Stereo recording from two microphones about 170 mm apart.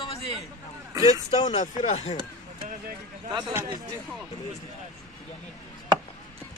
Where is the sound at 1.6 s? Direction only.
40° left (ahead or behind).